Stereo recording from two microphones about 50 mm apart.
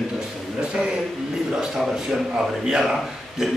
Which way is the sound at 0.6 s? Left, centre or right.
Centre.